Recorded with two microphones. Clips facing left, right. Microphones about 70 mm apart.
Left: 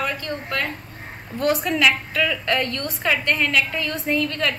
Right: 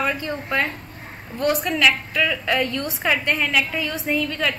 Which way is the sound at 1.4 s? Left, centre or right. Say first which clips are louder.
Even; centre.